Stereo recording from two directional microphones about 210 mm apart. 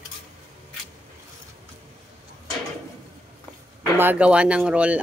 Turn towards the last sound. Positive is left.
turn(degrees=-5)  # may be behind; listen again after turning